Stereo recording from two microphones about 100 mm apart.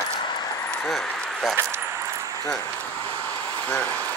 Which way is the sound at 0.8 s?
Centre (ahead or behind).